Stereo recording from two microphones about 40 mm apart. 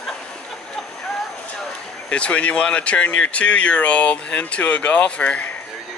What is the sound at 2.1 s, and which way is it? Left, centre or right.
Speech, left.